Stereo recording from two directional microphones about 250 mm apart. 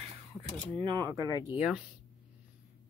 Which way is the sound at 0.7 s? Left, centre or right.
Centre.